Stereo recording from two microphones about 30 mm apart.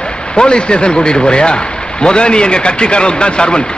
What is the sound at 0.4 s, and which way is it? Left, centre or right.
Speech, left.